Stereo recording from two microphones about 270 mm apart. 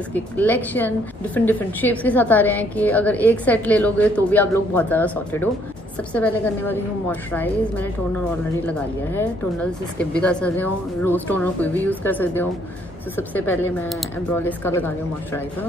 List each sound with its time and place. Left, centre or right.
0.1 s a woman's voice: centre